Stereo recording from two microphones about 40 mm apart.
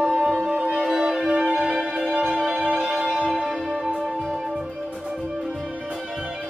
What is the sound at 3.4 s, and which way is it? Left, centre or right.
Music, centre.